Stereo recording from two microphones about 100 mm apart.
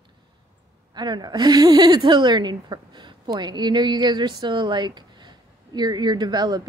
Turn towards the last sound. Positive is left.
turn(degrees=-45)  # may be behind; listen again after turning